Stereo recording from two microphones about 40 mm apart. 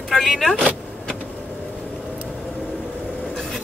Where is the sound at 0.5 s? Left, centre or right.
Left.